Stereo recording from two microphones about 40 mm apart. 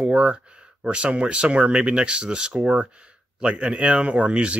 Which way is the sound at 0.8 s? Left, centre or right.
Right.